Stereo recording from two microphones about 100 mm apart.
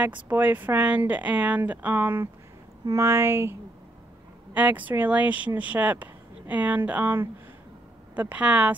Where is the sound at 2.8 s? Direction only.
30° right (ahead or behind).